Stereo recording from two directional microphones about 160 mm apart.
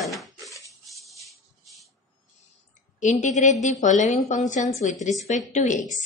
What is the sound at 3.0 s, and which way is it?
A woman's voice, 50° left (ahead or behind).